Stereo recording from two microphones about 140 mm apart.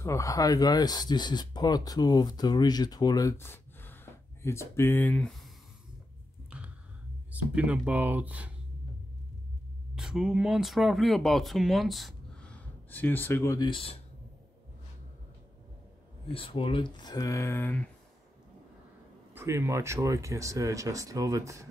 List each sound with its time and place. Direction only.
0.0 s speech: 20° left (ahead or behind)
6.5 s a sound: 10° right (ahead or behind)
7.5 s speech: 10° right (ahead or behind)
9.9 s speech: 5° right (ahead or behind); by 13.6 s 20° left (ahead or behind)
13.6 s speech: 40° left (ahead or behind)
16.3 s speech: 40° left (ahead or behind)
16.9 s speech: 30° left (ahead or behind); by 17.8 s 15° left (ahead or behind)
19.3 s speech: 20° right (ahead or behind)